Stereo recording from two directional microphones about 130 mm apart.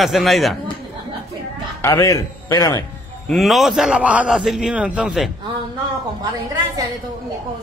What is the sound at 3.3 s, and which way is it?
A man's voice, centre (ahead or behind).